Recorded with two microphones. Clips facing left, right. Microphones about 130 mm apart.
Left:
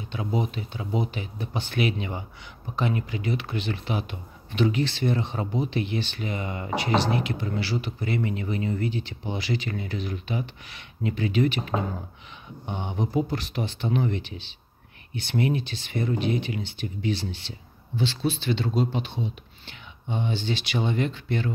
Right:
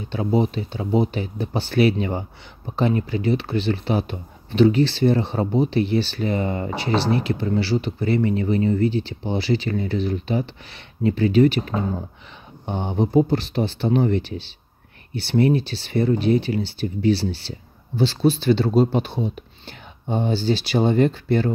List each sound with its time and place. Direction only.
0.1 s speech: 35° right (ahead or behind)